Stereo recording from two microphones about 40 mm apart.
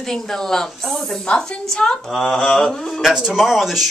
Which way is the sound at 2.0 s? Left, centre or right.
Centre.